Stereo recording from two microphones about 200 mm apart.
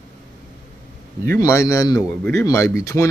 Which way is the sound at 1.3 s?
15° left (ahead or behind).